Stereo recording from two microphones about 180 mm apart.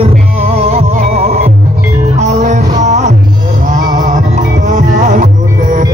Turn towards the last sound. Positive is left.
turn(degrees=-45)  # may be behind; listen again after turning